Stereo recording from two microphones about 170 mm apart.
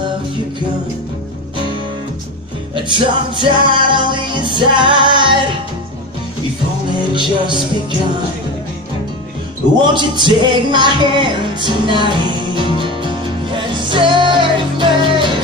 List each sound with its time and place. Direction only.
2.7 s music: 30° right (ahead or behind)
7.2 s music: 25° right (ahead or behind)
9.9 s music: 25° right (ahead or behind)